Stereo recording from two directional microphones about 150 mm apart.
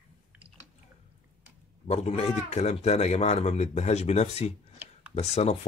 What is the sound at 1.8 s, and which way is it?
Speech, 45° left (ahead or behind).